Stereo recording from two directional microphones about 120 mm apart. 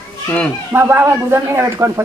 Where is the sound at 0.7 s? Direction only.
15° right (ahead or behind).